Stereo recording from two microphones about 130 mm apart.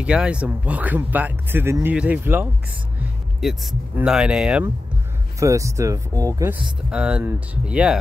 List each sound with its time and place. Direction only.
0.0 s speech: 10° right (ahead or behind)
3.4 s speech: centre (ahead or behind)
5.4 s speech: 25° right (ahead or behind)
6.6 s speech: 10° right (ahead or behind)